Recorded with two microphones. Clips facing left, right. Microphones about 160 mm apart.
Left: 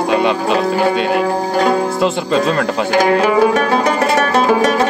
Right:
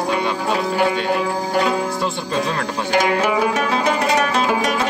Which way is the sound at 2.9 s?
55° left (ahead or behind).